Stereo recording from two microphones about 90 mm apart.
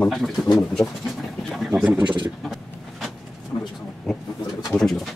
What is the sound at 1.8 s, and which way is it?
Pigeon, 10° right (ahead or behind).